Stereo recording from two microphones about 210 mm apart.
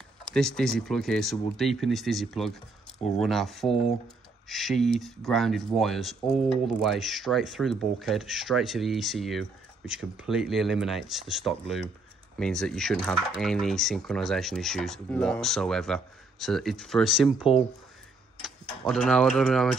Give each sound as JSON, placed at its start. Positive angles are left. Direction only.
{"t": 0.3, "sound": "speech", "side_deg": 5}